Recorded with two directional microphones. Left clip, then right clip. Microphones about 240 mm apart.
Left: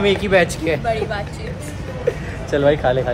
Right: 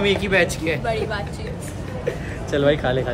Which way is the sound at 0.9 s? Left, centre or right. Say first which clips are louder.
Left 3 dB; centre.